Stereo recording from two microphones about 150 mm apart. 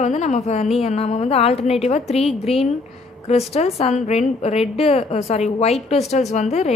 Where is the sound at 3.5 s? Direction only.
45° left (ahead or behind).